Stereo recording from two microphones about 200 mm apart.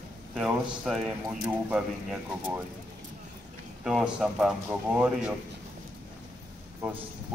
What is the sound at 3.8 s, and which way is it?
A man's voice, 5° right (ahead or behind).